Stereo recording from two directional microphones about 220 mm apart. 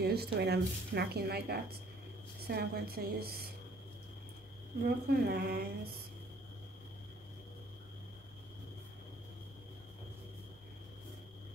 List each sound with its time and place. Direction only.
0.0 s speech: 45° right (ahead or behind)
4.8 s speech: 45° right (ahead or behind)